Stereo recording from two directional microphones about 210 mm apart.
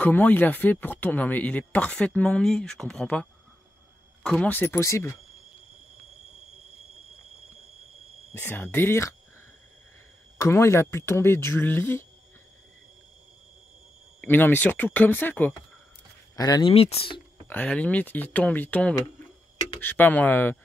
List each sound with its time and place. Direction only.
0.0 s speech: 10° left (ahead or behind)
8.3 s speech: 10° left (ahead or behind)
10.3 s speech: 15° left (ahead or behind)
14.2 s speech: 10° left (ahead or behind); by 17.2 s 25° left (ahead or behind)
17.5 s speech: 5° left (ahead or behind)